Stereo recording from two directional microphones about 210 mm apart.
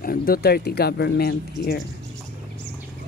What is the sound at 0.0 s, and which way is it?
Speech, 45° left (ahead or behind).